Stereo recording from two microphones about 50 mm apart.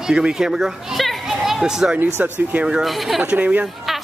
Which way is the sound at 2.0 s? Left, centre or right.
Right.